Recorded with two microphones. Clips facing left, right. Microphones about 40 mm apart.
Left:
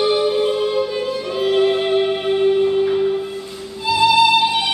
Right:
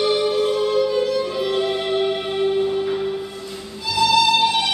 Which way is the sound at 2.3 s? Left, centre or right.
Centre.